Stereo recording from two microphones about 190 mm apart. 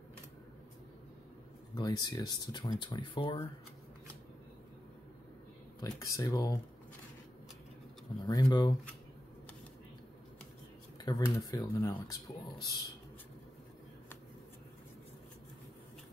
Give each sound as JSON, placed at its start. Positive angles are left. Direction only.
{"t": 1.8, "sound": "speech", "side_deg": 20}
{"t": 5.8, "sound": "speech", "side_deg": 20}
{"t": 8.2, "sound": "speech", "side_deg": 20}
{"t": 11.1, "sound": "speech", "side_deg": 20}